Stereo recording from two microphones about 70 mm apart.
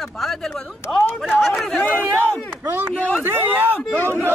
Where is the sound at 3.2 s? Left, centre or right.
Right.